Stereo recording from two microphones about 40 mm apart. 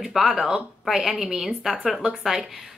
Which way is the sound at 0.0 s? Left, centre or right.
Centre.